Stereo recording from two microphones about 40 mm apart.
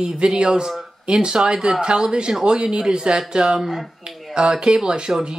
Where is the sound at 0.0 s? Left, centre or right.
Centre.